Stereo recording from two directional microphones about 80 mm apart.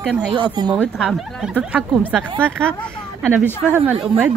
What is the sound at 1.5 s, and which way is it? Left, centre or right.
Speech, centre.